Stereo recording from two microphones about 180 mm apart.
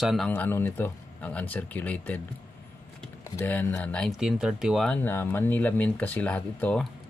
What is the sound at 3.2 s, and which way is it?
Speech, 10° left (ahead or behind).